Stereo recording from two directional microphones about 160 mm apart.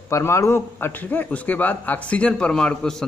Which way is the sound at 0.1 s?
15° left (ahead or behind).